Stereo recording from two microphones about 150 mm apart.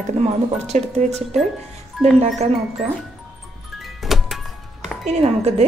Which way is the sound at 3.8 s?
Centre (ahead or behind).